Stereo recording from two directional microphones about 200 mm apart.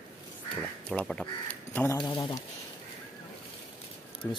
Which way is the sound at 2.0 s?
25° left (ahead or behind).